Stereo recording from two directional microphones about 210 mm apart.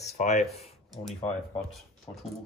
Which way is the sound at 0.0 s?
35° left (ahead or behind).